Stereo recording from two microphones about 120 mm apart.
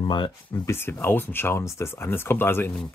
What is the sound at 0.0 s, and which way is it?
Speech, 40° left (ahead or behind).